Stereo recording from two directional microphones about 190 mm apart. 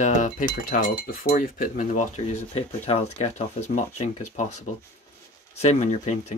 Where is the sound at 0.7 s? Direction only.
50° left (ahead or behind).